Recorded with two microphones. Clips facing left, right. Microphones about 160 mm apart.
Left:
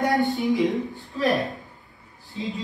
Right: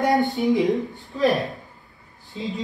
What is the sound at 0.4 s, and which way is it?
Speech, 20° right (ahead or behind).